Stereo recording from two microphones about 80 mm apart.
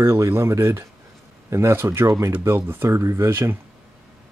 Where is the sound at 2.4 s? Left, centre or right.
Right.